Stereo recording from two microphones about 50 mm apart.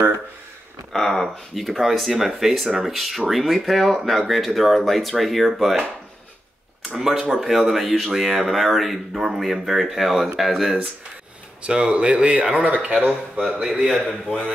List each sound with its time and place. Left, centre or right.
0.9 s speech: centre
7.0 s speech: centre
11.6 s speech: right
13.6 s speech: centre